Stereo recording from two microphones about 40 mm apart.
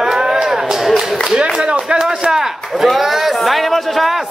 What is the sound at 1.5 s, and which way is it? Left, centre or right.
Speech, right.